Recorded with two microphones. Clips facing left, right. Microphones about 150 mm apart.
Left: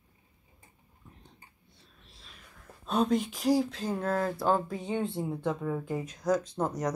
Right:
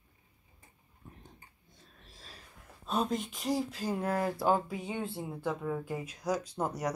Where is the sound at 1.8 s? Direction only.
45° right (ahead or behind).